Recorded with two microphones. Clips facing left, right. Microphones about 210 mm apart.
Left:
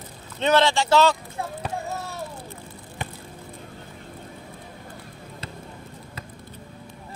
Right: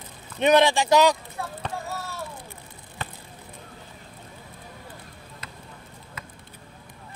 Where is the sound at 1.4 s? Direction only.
20° left (ahead or behind).